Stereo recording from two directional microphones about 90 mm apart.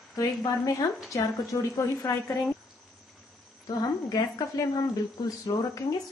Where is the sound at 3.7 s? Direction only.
45° left (ahead or behind).